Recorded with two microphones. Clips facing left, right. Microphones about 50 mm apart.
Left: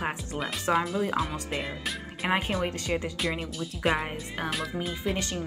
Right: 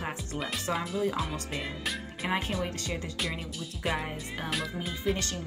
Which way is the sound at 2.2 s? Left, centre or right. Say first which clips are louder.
Left 4 dB; left.